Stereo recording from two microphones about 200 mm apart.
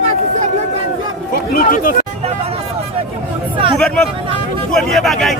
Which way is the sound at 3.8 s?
5° left (ahead or behind).